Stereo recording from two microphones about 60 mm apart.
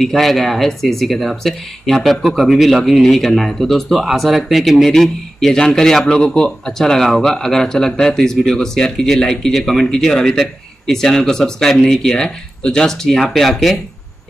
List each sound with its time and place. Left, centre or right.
0.0 s speech: centre